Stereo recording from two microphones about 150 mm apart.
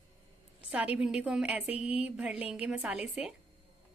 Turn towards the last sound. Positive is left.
turn(degrees=-5)  # may be behind; listen again after turning